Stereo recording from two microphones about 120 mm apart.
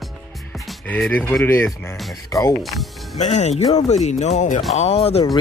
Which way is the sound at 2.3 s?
30° left (ahead or behind).